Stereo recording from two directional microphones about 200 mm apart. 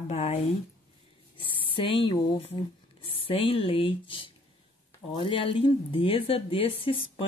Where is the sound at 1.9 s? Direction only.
25° left (ahead or behind).